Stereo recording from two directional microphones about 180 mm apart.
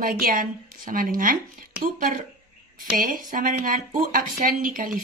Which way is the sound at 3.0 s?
50° right (ahead or behind).